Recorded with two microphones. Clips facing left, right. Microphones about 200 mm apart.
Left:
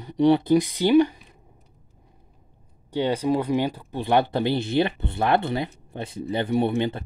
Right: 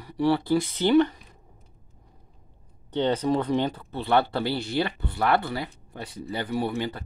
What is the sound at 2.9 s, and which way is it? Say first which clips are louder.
Speech: left 1 dB; 10° left (ahead or behind).